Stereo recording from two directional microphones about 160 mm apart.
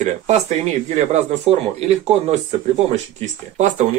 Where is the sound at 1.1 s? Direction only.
40° right (ahead or behind).